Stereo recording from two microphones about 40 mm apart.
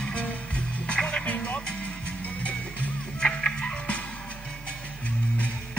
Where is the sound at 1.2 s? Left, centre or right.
Left.